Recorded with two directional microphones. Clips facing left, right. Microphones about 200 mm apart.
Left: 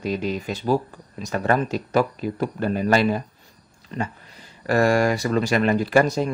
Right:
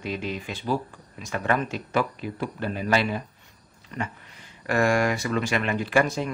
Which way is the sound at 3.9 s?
25° left (ahead or behind).